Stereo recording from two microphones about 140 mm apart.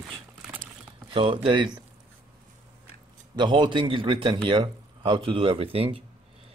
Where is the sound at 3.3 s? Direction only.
35° right (ahead or behind).